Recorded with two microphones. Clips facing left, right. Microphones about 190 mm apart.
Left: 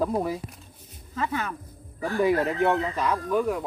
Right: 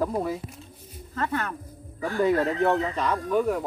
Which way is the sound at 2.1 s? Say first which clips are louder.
Even; 15° left (ahead or behind).